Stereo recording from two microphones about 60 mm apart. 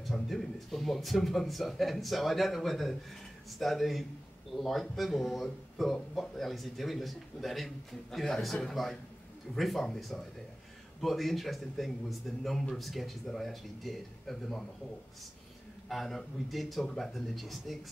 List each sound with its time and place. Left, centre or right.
0.1 s a man's voice: centre
15.9 s a man's voice: centre